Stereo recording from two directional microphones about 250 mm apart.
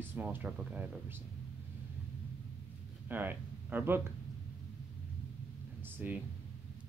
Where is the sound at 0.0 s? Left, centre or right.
Centre.